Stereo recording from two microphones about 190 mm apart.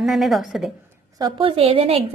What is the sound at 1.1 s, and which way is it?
A woman's voice, 25° right (ahead or behind).